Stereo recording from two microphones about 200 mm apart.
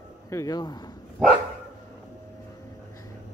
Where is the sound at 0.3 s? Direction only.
15° left (ahead or behind).